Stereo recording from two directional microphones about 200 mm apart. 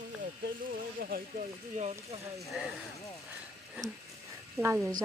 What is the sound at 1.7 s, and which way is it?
Speech, 35° right (ahead or behind).